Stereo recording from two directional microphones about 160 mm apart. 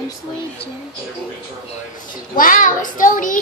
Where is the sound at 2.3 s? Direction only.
55° left (ahead or behind).